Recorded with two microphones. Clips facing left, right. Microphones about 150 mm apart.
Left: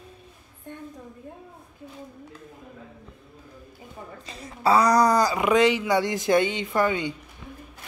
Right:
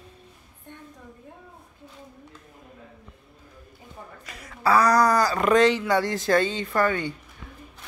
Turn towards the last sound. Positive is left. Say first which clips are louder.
# even
turn(degrees=15)  # may be behind; listen again after turning